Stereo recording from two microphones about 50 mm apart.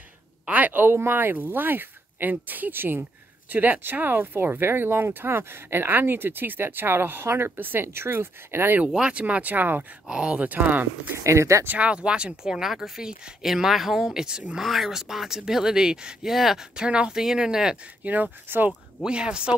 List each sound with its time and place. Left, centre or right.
0.5 s a sound: right
0.8 s speech: right
8.8 s speech: centre
9.2 s speech: right
10.0 s speech: centre
10.4 s speech: right
11.2 s speech: right
11.8 s speech: right
14.6 s speech: centre
16.3 s speech: centre
18.0 s speech: right
19.0 s speech: centre